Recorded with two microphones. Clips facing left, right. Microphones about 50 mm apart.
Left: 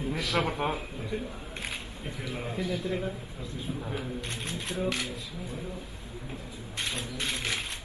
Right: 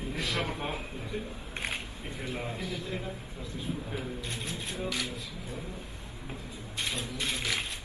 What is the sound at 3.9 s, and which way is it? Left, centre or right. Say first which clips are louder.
Speech: left 1 dB; left.